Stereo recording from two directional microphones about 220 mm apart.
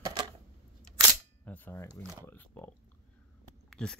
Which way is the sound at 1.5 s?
10° left (ahead or behind).